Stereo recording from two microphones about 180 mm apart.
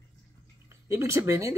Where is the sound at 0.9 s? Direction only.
15° right (ahead or behind).